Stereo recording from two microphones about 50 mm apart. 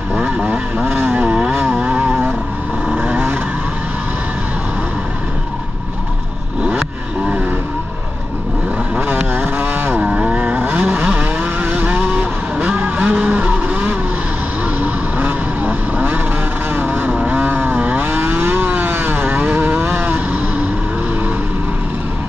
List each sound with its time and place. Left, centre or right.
0.4 s vehicle: right
2.0 s vehicle: right
7.2 s vehicle: right
9.0 s vehicle: right
10.0 s vehicle: right
10.9 s vehicle: right
11.1 s vehicle: right
19.2 s vehicle: right